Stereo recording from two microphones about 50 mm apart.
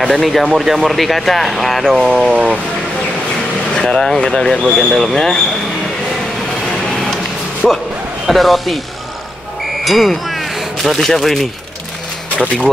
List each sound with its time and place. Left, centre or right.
0.0 s speech: centre
2.0 s speech: centre
3.7 s speech: centre
7.6 s speech: centre
9.8 s speech: centre